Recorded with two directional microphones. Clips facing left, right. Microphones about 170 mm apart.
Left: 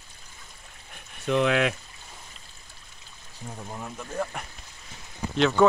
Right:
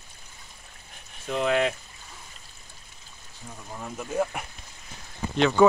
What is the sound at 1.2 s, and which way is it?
Speech, 70° left (ahead or behind).